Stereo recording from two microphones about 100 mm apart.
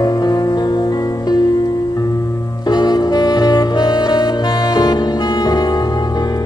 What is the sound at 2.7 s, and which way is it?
Saxophone, 45° left (ahead or behind).